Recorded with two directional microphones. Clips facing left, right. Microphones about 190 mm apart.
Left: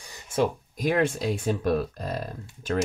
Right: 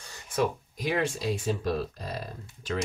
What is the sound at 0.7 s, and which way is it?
Speech, 50° left (ahead or behind).